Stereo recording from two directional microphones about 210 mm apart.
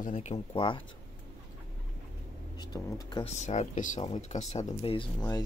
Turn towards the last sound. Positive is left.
turn(degrees=20)  # may be behind; listen again after turning